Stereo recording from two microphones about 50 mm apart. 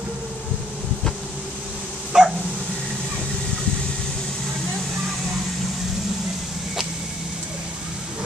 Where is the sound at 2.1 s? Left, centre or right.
Centre.